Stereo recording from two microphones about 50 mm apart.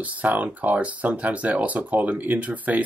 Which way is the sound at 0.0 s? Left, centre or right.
Right.